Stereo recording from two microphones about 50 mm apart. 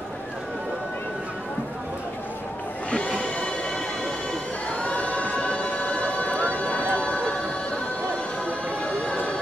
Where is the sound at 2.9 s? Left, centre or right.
Left.